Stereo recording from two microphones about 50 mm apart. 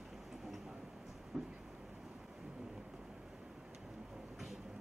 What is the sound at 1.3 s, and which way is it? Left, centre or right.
Vehicle, centre.